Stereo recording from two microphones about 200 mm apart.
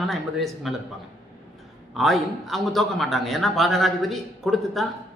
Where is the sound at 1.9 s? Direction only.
Centre (ahead or behind).